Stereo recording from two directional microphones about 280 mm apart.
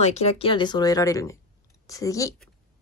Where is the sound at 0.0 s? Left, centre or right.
Left; by 2.5 s centre.